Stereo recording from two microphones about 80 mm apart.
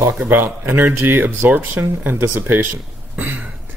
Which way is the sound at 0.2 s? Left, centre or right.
Right.